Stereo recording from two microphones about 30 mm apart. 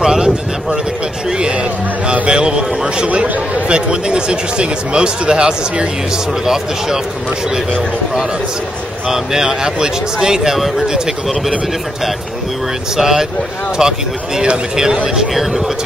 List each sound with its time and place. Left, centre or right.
0.0 s a sound: right
1.4 s a sound: right
2.2 s speech: right
3.6 s speech: right
6.4 s speech: centre
12.9 s speech: centre